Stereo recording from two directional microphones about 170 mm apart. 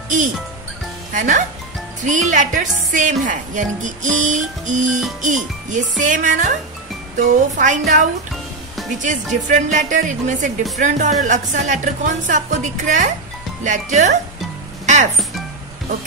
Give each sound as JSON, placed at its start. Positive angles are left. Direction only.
{"t": 1.1, "sound": "speech", "side_deg": -50}